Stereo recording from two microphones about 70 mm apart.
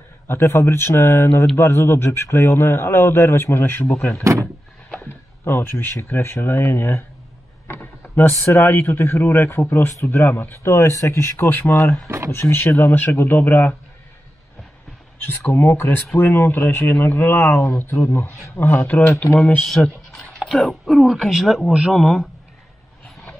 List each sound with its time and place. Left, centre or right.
0.3 s a man's voice: left
4.2 s speech: right
5.4 s a man's voice: left
7.6 s a sound: left
8.5 s a man's voice: left
15.2 s a man's voice: left
20.2 s speech: centre